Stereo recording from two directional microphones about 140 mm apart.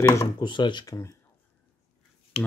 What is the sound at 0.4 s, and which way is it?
Speech, 35° left (ahead or behind).